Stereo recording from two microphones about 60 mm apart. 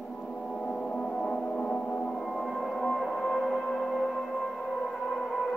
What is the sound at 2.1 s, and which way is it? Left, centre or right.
Music, centre.